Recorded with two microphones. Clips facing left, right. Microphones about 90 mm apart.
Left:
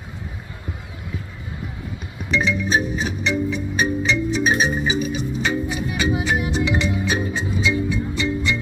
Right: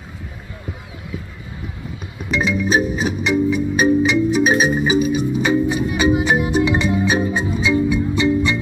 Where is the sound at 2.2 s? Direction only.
10° right (ahead or behind).